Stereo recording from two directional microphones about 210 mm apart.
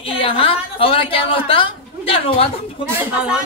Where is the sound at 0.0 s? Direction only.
25° left (ahead or behind).